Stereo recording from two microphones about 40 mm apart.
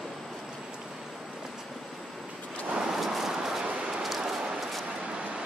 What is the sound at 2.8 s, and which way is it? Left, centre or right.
Vehicle, centre.